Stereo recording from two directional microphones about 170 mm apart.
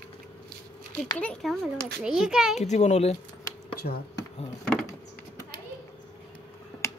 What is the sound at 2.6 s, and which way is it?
Speech, 40° left (ahead or behind).